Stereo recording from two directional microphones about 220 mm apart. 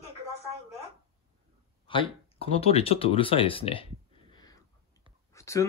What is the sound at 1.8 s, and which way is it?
Speech, 25° left (ahead or behind).